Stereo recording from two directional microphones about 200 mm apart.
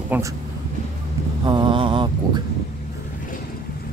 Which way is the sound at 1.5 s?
25° right (ahead or behind).